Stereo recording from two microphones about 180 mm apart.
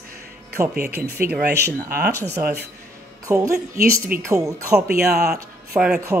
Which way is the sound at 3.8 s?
55° right (ahead or behind).